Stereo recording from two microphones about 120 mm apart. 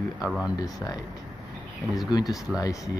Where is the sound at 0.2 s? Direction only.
5° right (ahead or behind).